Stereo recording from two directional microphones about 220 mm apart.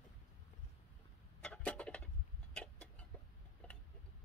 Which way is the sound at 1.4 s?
5° left (ahead or behind).